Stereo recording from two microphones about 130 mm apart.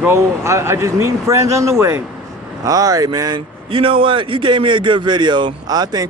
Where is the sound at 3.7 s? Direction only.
40° right (ahead or behind).